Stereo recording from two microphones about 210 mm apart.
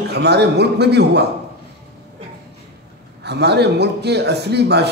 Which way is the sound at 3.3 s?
50° right (ahead or behind).